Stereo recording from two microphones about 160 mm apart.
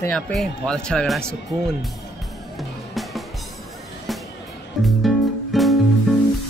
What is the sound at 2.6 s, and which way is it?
Music, centre (ahead or behind).